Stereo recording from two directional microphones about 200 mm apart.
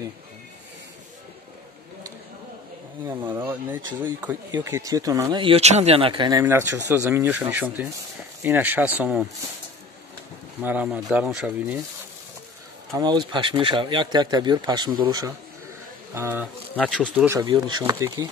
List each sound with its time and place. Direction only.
3.1 s speech: 10° right (ahead or behind)
6.4 s speech: 10° right (ahead or behind)
10.6 s speech: 10° right (ahead or behind)
12.9 s speech: 20° right (ahead or behind)
16.7 s speech: 5° left (ahead or behind)
17.3 s speech: 20° right (ahead or behind)